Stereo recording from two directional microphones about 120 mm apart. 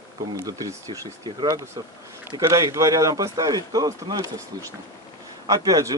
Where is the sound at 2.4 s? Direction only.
25° right (ahead or behind).